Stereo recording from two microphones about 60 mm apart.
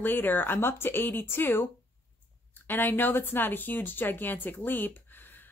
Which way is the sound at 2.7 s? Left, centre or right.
Left.